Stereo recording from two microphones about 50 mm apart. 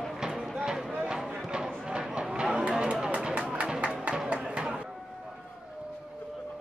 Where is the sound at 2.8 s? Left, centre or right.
Centre.